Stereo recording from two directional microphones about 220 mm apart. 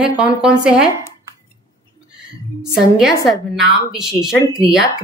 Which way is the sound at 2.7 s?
Centre (ahead or behind).